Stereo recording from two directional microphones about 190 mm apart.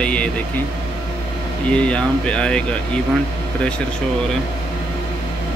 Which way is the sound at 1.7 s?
5° left (ahead or behind).